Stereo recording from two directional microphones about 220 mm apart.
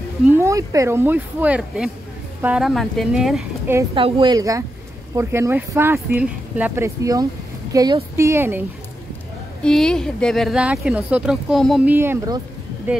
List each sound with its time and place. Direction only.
0.4 s speech: 15° right (ahead or behind)
3.9 s speech: 20° right (ahead or behind)
9.6 s speech: 5° left (ahead or behind)